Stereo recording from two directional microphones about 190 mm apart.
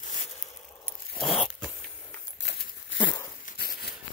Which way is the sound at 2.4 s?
60° left (ahead or behind).